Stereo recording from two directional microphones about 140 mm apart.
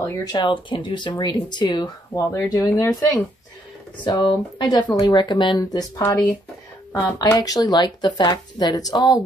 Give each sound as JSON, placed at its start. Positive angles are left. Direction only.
{"t": 0.0, "sound": "speech", "side_deg": 25}
{"t": 4.2, "sound": "speech", "side_deg": 35}